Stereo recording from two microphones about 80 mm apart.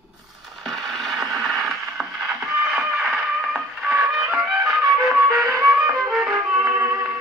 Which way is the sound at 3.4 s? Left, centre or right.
Right.